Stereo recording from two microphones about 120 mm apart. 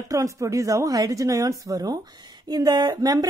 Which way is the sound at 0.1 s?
25° right (ahead or behind).